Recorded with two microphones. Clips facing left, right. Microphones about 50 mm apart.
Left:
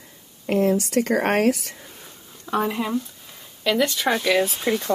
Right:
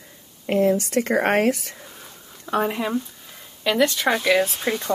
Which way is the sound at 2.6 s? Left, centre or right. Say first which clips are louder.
Right 1 dB; right.